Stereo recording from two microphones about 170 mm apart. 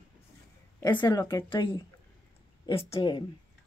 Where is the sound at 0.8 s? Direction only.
20° left (ahead or behind).